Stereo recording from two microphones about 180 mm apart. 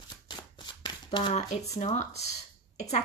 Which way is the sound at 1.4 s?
40° left (ahead or behind).